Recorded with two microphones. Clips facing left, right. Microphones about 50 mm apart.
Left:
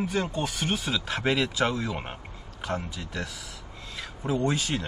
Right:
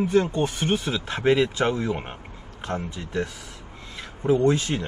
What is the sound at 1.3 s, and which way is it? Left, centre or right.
Speech, right.